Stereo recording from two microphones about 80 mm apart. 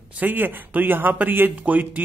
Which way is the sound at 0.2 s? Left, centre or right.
Right.